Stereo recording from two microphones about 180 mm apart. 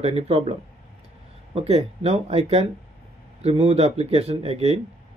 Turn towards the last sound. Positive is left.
turn(degrees=-35)  # may be behind; listen again after turning